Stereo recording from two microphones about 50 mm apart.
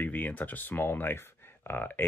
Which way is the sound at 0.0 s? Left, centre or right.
Left.